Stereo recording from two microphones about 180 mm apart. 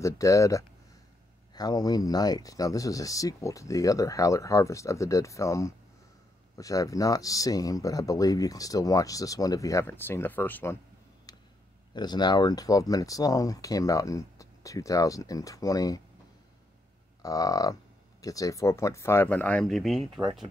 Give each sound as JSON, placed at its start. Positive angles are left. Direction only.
{"t": 0.0, "sound": "speech", "side_deg": 15}
{"t": 11.9, "sound": "speech", "side_deg": 25}
{"t": 17.2, "sound": "speech", "side_deg": 20}